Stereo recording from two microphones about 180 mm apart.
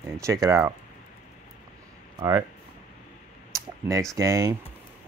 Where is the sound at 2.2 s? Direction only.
20° right (ahead or behind).